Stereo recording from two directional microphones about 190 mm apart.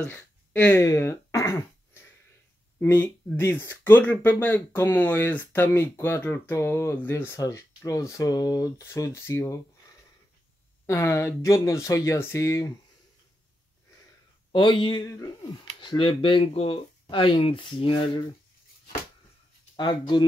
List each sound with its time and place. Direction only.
0.0 s speech: 10° left (ahead or behind)
10.9 s speech: 15° left (ahead or behind)
14.5 s speech: 25° left (ahead or behind)
19.8 s speech: 25° left (ahead or behind)